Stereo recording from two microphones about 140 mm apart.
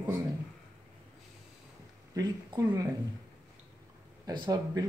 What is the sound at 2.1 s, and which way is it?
Speech, 25° right (ahead or behind).